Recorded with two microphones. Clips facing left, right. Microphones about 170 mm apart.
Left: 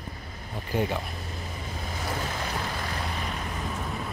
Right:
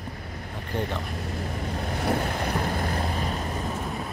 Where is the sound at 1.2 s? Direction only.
60° right (ahead or behind); by 3.3 s 40° right (ahead or behind).